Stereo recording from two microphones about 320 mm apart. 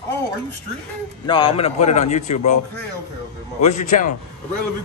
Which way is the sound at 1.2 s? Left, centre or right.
Centre.